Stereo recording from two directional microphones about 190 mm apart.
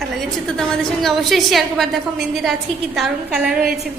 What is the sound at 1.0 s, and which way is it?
A woman's voice, centre (ahead or behind).